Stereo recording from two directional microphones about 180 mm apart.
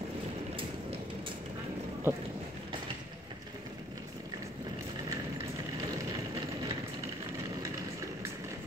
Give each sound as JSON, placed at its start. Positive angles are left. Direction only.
{"t": 2.1, "sound": "speech", "side_deg": -15}